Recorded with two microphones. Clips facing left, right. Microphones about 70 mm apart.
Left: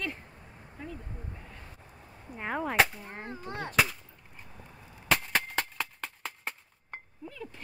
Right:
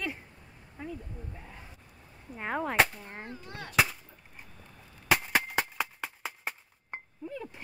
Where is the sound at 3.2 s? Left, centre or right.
Left.